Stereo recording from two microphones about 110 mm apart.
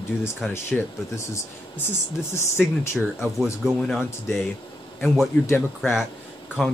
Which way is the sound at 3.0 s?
5° left (ahead or behind).